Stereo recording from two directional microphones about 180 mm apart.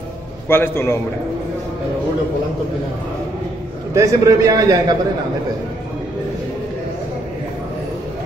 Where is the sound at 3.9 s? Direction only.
20° right (ahead or behind).